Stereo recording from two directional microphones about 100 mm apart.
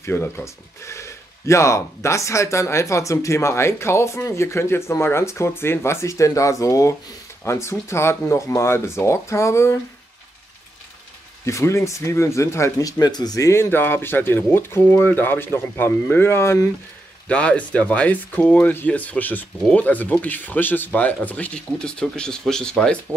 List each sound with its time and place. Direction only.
0.0 s speech: 20° left (ahead or behind)
11.4 s speech: 30° left (ahead or behind)
13.0 s speech: 40° left (ahead or behind)
17.3 s speech: 10° left (ahead or behind)